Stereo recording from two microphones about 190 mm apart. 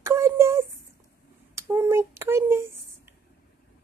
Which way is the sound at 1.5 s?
15° right (ahead or behind).